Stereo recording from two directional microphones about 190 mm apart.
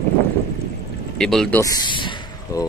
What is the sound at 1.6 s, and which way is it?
Speech, 20° left (ahead or behind).